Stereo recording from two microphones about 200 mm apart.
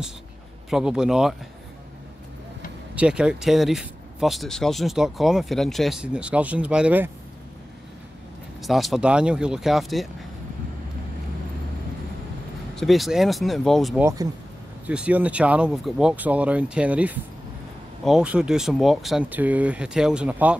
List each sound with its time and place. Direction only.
0.7 s speech: 5° right (ahead or behind)
3.0 s speech: 5° right (ahead or behind)
8.6 s speech: centre (ahead or behind)
12.7 s speech: centre (ahead or behind)
14.0 s speech: 15° right (ahead or behind)
14.9 s speech: 5° right (ahead or behind)